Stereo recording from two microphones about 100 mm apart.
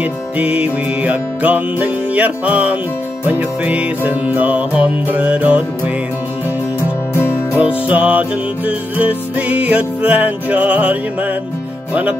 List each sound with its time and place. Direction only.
0.0 s music: 15° right (ahead or behind)
7.5 s music: 10° right (ahead or behind)